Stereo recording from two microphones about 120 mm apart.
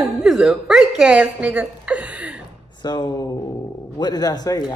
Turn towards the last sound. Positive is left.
turn(degrees=30)  # may be behind; listen again after turning